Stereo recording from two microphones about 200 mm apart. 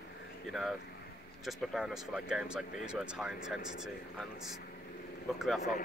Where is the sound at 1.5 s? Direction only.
Centre (ahead or behind).